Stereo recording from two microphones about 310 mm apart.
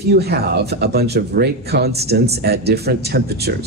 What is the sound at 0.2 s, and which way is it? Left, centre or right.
Speech, right.